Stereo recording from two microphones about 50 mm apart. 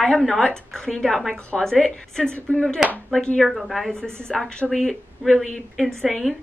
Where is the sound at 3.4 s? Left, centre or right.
Centre.